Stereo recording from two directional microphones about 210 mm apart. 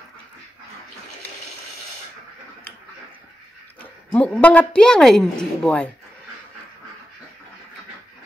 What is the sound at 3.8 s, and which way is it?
A woman's voice, 5° left (ahead or behind).